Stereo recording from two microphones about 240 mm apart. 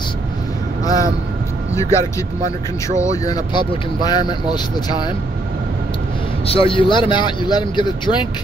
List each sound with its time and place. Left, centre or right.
0.8 s vehicle: centre
1.7 s speech: centre
3.0 s speech: centre
6.4 s a man's voice: left